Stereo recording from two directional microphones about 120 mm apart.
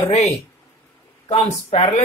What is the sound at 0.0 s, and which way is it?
Speech, 60° left (ahead or behind).